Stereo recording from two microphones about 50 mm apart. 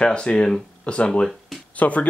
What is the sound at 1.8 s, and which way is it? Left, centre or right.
Speech, left.